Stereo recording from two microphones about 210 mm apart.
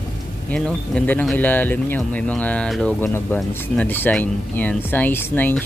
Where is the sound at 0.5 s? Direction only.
5° left (ahead or behind).